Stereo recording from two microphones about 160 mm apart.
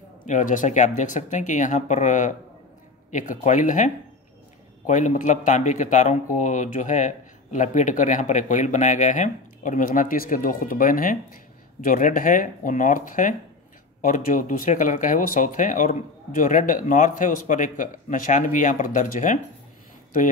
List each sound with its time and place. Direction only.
0.3 s speech: 55° left (ahead or behind)